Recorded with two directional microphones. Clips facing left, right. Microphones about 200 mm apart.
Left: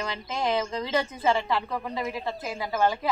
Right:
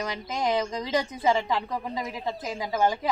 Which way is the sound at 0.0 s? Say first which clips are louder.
Right 1 dB; 15° right (ahead or behind).